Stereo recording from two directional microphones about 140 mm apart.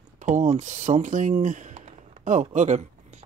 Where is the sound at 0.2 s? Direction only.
60° right (ahead or behind).